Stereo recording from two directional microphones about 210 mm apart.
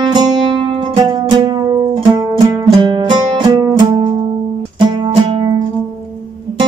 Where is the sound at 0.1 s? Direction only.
20° right (ahead or behind).